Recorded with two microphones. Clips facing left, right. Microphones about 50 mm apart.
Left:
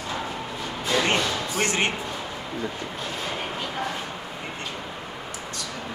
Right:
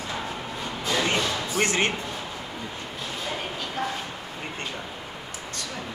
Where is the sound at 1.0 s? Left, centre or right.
Left.